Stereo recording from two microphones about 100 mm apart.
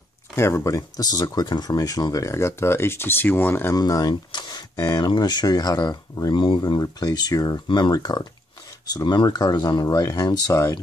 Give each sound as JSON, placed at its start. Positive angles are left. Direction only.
{"t": 0.4, "sound": "speech", "side_deg": 30}
{"t": 3.7, "sound": "speech", "side_deg": 40}